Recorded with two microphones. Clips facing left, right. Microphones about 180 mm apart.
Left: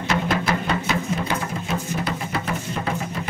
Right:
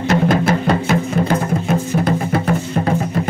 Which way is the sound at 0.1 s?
45° right (ahead or behind).